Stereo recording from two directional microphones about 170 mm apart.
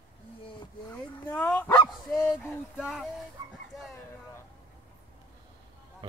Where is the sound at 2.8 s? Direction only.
Centre (ahead or behind).